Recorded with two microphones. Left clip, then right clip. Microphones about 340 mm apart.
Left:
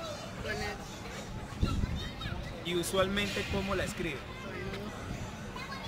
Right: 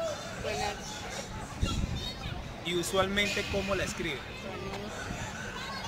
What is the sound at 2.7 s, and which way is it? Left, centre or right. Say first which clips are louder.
Speech: right 1 dB; centre.